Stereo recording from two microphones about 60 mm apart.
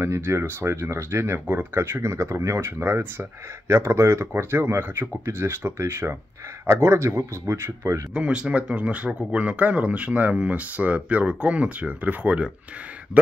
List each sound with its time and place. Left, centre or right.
0.0 s speech: right
2.8 s speech: right
3.6 s speech: right
4.3 s speech: right
8.1 s speech: centre